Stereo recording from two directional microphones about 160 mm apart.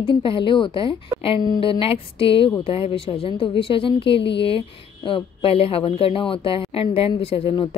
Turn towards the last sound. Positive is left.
turn(degrees=35)  # may be behind; listen again after turning